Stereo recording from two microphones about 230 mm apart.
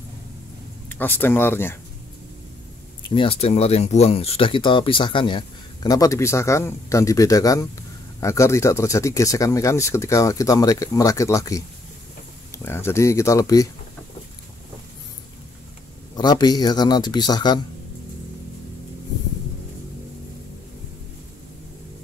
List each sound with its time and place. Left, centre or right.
0.8 s speech: centre
3.0 s speech: left
12.6 s speech: centre
16.2 s speech: centre